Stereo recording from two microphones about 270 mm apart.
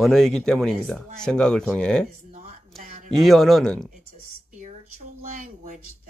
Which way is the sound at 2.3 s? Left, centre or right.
Right.